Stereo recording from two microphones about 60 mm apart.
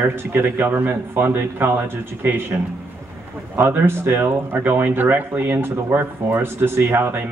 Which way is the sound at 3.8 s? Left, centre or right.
Right.